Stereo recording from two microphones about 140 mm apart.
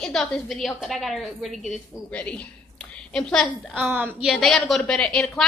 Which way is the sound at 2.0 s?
10° left (ahead or behind).